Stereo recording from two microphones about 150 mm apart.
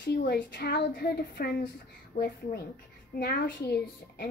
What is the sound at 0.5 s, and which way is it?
A woman's voice, 90° left.